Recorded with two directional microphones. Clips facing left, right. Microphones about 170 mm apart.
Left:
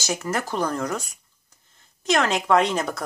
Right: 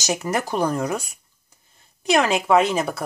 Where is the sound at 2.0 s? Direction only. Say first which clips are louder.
Right 3 dB; 10° right (ahead or behind).